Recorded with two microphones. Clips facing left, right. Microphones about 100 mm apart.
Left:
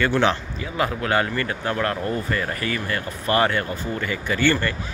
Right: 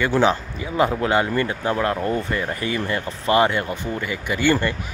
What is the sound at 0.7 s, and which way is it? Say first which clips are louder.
Speech: right 3 dB; 20° right (ahead or behind).